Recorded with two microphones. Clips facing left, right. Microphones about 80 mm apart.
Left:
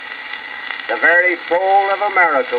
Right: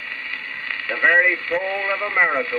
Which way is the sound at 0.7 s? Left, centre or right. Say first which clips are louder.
Left 5 dB; left.